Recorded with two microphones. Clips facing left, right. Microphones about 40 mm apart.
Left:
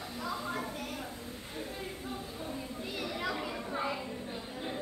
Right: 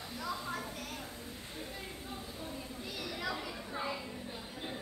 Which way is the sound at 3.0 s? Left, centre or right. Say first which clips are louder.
Left 3 dB; left.